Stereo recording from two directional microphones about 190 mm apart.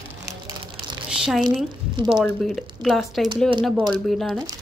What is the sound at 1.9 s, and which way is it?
Speech, 25° right (ahead or behind).